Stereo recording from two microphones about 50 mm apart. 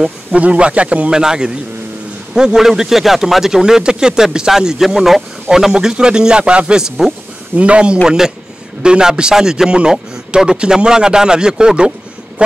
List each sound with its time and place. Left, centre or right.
0.4 s speech: right
1.1 s speech: centre
7.5 s speech: right
12.4 s a sound: right